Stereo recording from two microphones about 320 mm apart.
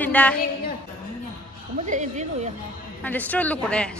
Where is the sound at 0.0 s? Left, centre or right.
Centre.